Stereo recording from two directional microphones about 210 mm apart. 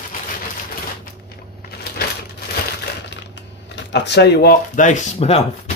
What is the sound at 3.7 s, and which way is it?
Speech, 55° left (ahead or behind).